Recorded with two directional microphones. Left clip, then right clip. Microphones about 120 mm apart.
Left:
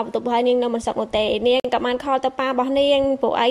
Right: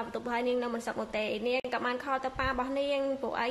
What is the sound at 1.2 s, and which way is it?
A woman's voice, 60° left (ahead or behind).